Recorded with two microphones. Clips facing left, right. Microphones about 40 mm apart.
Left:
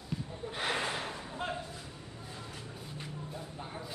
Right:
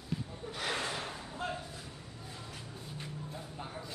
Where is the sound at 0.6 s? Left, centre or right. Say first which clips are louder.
Left 2 dB; left.